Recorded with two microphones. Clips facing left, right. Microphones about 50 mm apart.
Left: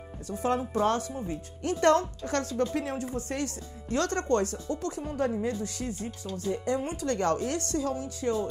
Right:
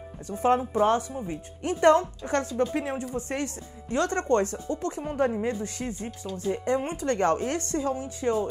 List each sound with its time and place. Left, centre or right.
0.3 s speech: right